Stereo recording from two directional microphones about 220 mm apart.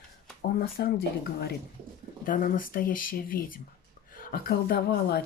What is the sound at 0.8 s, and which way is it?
Speech, 45° left (ahead or behind).